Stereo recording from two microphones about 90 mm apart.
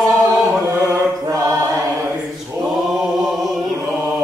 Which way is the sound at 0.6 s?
35° right (ahead or behind).